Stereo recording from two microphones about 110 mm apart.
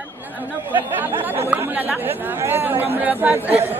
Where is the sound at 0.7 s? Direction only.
15° right (ahead or behind).